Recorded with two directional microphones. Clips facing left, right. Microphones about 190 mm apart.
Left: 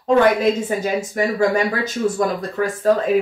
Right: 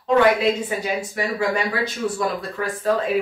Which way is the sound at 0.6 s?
45° left (ahead or behind).